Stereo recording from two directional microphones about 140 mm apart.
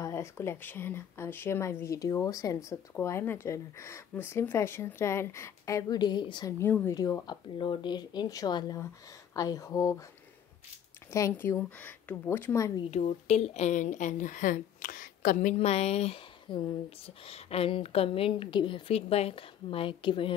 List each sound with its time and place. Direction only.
0.0 s speech: 20° left (ahead or behind)
6.6 s speech: 10° left (ahead or behind)
6.9 s speech: 25° left (ahead or behind)
11.1 s speech: 20° left (ahead or behind)
12.9 s speech: 50° left (ahead or behind); by 15.5 s 65° left (ahead or behind)
15.5 s speech: 45° left (ahead or behind)